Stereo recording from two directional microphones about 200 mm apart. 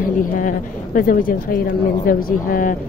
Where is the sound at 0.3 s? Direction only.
40° left (ahead or behind).